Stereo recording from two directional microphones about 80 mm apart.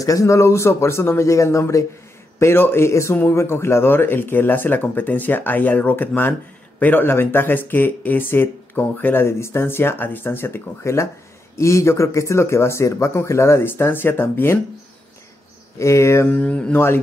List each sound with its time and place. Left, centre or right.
0.0 s speech: left
15.8 s speech: left
16.3 s mantra: centre